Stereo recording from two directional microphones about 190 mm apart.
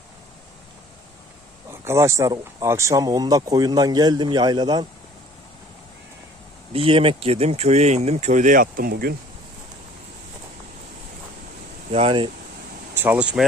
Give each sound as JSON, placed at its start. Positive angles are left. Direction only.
{"t": 1.7, "sound": "speech", "side_deg": -15}
{"t": 6.7, "sound": "speech", "side_deg": -30}
{"t": 11.9, "sound": "speech", "side_deg": -30}
{"t": 12.9, "sound": "speech", "side_deg": -10}